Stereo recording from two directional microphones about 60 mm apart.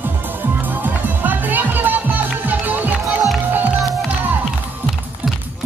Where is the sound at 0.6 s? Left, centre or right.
Right.